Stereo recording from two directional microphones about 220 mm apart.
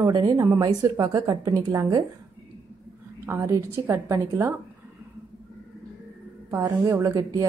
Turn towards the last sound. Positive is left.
turn(degrees=-15)  # may be behind; listen again after turning